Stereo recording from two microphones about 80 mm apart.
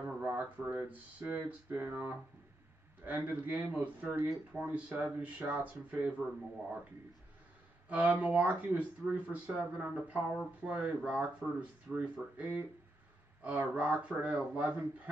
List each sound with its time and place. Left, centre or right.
0.0 s a sound: centre
0.7 s speech: right
7.9 s speech: centre